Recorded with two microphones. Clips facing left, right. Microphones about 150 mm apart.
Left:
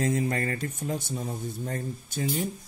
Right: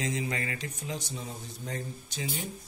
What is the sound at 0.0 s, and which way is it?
Speech, 50° left (ahead or behind).